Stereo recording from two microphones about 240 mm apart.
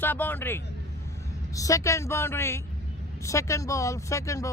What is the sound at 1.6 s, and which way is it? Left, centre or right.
Speech, centre.